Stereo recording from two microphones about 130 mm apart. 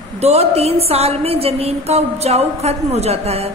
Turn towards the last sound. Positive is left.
turn(degrees=-50)  # may be behind; listen again after turning